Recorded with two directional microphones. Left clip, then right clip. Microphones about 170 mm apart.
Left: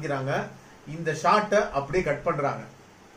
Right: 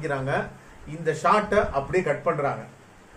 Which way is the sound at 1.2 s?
20° right (ahead or behind).